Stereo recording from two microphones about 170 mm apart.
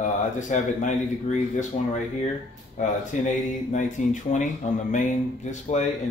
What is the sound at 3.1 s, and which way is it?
Speech, 45° left (ahead or behind).